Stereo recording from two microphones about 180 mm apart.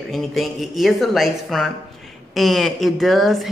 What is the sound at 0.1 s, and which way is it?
A man's voice, centre (ahead or behind).